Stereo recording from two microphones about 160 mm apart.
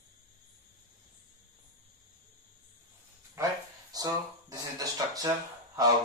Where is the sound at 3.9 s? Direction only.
25° right (ahead or behind).